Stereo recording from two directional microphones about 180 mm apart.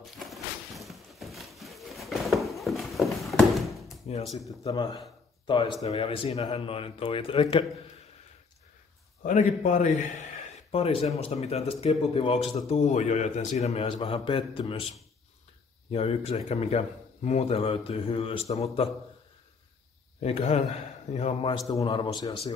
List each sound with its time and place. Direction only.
0.0 s a sound: centre (ahead or behind)
4.3 s speech: centre (ahead or behind)
4.6 s a man's voice: 25° left (ahead or behind)
9.2 s a man's voice: 45° left (ahead or behind)
10.7 s speech: 30° left (ahead or behind)
15.9 s speech: 35° left (ahead or behind)
20.2 s speech: 35° left (ahead or behind)
21.6 s a man's voice: 25° left (ahead or behind)